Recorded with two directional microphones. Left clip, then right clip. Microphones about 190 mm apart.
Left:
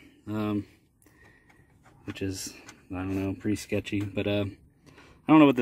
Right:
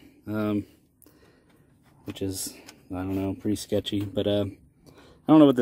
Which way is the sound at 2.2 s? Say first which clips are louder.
Right 2 dB; 5° right (ahead or behind).